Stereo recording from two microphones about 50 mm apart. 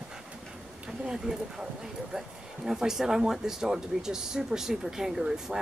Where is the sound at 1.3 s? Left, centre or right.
Centre.